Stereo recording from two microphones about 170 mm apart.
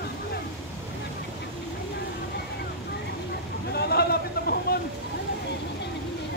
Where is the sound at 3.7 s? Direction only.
70° left (ahead or behind).